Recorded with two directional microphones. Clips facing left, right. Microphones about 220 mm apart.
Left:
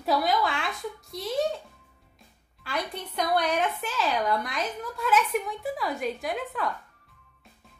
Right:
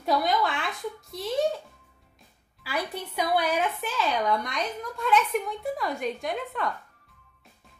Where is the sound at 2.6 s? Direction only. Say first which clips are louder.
Right 1 dB; 5° right (ahead or behind).